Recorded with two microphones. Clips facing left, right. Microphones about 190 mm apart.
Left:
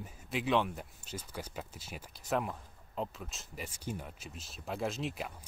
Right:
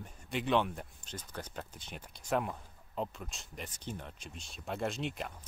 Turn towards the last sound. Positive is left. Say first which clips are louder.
# even
turn(degrees=0)  # may be behind; listen again after turning